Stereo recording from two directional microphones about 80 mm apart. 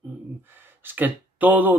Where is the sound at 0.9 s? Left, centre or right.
Right.